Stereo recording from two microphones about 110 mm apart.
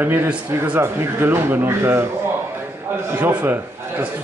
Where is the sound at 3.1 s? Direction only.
15° right (ahead or behind).